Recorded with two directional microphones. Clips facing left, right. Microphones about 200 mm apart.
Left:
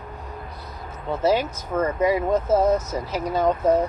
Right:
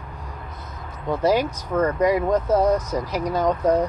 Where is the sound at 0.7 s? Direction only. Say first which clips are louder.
Right 3 dB; 5° left (ahead or behind).